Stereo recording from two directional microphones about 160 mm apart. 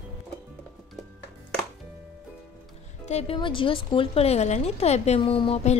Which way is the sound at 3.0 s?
40° left (ahead or behind).